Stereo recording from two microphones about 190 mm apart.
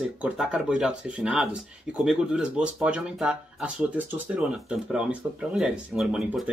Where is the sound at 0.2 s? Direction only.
5° right (ahead or behind).